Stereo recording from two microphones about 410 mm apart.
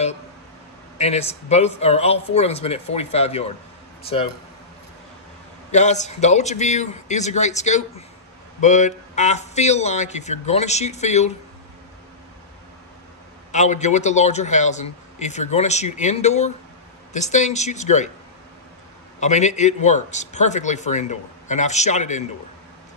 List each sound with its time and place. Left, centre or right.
0.9 s a man's voice: centre
5.7 s a man's voice: centre
13.5 s a man's voice: centre
19.1 s a man's voice: centre